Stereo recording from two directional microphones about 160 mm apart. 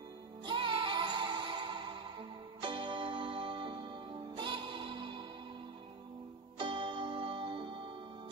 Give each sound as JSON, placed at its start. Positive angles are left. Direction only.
{"t": 0.5, "sound": "music", "side_deg": -30}
{"t": 6.6, "sound": "music", "side_deg": -30}